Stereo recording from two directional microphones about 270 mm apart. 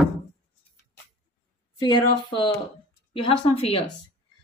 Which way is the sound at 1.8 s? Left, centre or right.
Centre.